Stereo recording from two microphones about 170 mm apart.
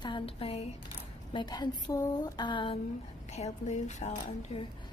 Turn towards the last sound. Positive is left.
turn(degrees=40)  # may be behind; listen again after turning